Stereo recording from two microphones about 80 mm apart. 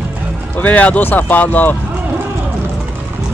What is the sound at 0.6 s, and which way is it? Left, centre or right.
Speech, centre.